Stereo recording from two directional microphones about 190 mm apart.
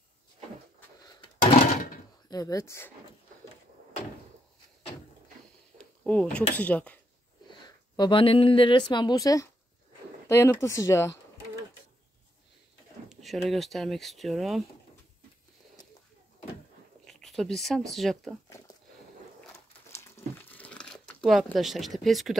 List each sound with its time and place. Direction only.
2.2 s speech: 20° left (ahead or behind)
5.8 s a sound: 5° left (ahead or behind)
6.5 s speech: 10° left (ahead or behind)
7.4 s speech: 20° left (ahead or behind)
13.1 s speech: centre (ahead or behind)
17.0 s a sound: centre (ahead or behind)
17.9 s speech: centre (ahead or behind)
19.9 s crumpling: 15° left (ahead or behind)